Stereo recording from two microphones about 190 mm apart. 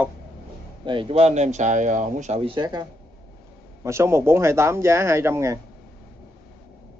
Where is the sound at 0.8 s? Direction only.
25° right (ahead or behind).